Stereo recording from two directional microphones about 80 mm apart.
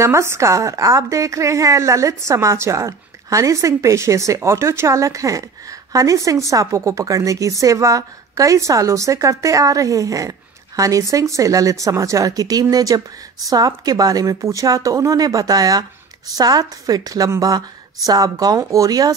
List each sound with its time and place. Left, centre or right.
0.0 s a woman's voice: right